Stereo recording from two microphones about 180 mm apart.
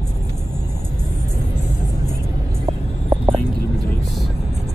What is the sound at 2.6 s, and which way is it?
Vehicle, 30° right (ahead or behind).